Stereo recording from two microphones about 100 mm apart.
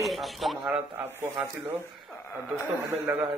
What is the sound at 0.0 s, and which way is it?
Speech, centre (ahead or behind).